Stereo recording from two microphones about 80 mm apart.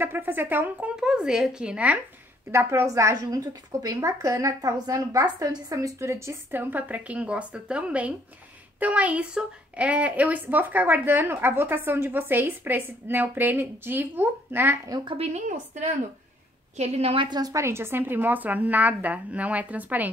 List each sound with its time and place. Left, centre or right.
0.0 s speech: right
2.5 s a woman's voice: right
17.2 s a woman's voice: right
17.6 s a woman's voice: right